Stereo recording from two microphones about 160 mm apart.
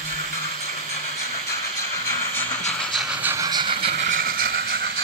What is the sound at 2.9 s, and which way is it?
Train, 5° right (ahead or behind).